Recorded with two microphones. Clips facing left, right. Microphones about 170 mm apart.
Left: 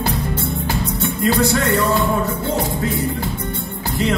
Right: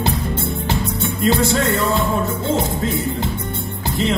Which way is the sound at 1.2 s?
25° right (ahead or behind).